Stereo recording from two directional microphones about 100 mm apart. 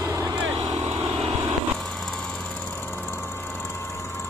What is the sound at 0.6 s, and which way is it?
Vehicle, 40° right (ahead or behind).